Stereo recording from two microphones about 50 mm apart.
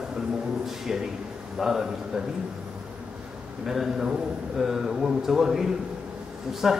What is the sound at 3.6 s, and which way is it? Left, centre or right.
A man's voice, centre.